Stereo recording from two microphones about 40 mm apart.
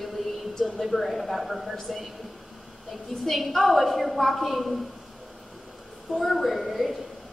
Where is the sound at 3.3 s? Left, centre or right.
Centre.